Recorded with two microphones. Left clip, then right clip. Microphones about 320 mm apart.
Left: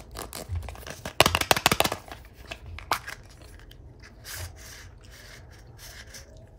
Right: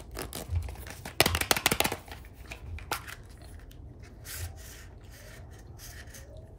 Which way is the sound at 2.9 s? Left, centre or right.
Centre.